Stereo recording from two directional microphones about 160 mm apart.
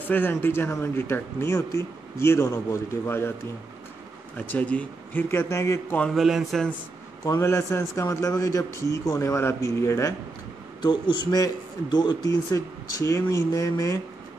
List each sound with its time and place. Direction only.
0.0 s speech: 10° left (ahead or behind)
4.5 s speech: 10° left (ahead or behind)
5.9 s a man's voice: centre (ahead or behind)
7.2 s a man's voice: 20° left (ahead or behind)